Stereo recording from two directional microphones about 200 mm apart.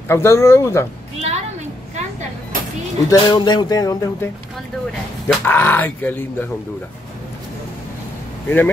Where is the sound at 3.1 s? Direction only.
20° left (ahead or behind).